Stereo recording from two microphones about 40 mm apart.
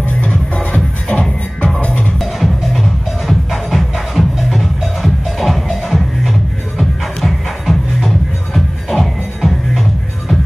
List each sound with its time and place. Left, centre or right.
0.2 s music: left
2.1 s music: centre